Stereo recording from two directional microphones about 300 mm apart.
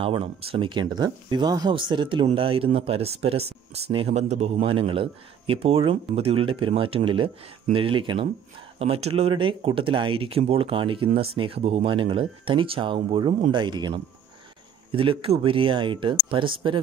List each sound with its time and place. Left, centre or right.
0.0 s speech: centre